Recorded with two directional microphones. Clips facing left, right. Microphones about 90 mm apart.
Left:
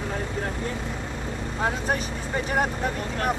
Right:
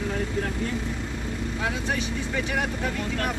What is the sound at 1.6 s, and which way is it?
Speech, 40° left (ahead or behind).